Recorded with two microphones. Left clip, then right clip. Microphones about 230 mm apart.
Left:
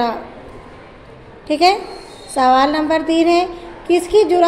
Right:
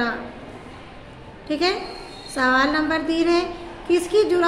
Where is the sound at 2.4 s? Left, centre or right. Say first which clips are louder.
Left 6 dB; centre.